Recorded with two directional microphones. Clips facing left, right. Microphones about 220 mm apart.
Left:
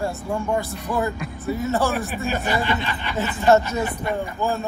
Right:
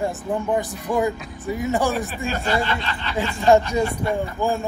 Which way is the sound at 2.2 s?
15° left (ahead or behind).